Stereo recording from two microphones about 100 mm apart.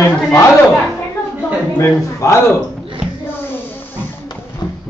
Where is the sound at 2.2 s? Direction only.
30° left (ahead or behind).